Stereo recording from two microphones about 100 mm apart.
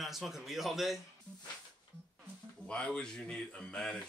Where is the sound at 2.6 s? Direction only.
10° left (ahead or behind).